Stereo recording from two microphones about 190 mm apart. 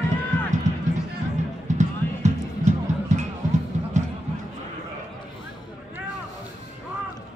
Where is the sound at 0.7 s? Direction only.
40° right (ahead or behind).